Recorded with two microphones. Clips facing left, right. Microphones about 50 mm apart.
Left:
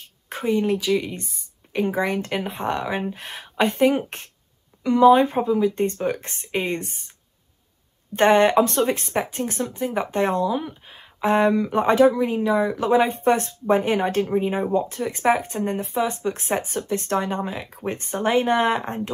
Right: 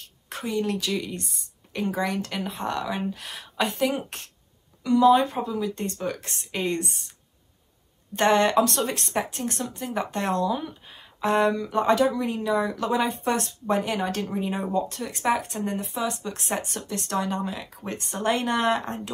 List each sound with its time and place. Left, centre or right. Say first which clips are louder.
0.3 s speech: left 6 dB; left
8.2 s speech: left 4 dB; left